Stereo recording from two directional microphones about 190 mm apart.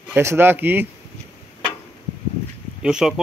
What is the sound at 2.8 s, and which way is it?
Speech, 5° right (ahead or behind).